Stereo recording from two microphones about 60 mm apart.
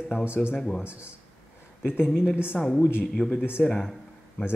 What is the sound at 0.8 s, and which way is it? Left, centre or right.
Speech, right.